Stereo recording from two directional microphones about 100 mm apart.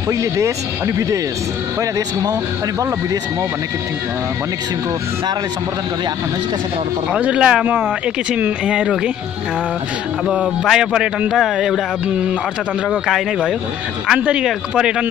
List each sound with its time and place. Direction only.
0.1 s speech: 30° right (ahead or behind)
7.1 s speech: 10° right (ahead or behind)
10.6 s speech: 5° right (ahead or behind)